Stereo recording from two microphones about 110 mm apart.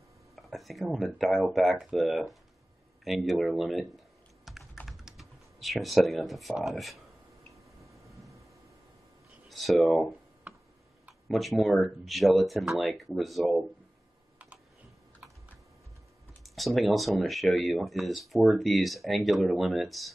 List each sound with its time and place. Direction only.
0.4 s speech: centre (ahead or behind)
4.5 s computer keyboard: centre (ahead or behind)
6.6 s speech: centre (ahead or behind)
8.2 s a sound: 30° right (ahead or behind)
9.5 s speech: centre (ahead or behind)
11.2 s speech: centre (ahead or behind)
16.4 s speech: centre (ahead or behind)